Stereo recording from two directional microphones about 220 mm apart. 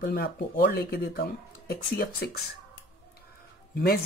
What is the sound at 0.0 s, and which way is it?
Speech, 45° left (ahead or behind).